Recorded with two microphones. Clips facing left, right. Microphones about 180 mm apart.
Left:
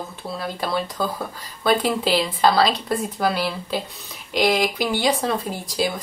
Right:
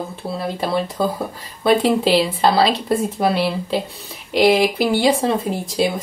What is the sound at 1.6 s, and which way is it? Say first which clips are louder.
Speech: right 5 dB; 5° right (ahead or behind).